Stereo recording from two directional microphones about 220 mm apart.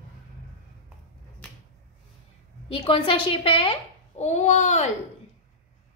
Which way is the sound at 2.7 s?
25° left (ahead or behind).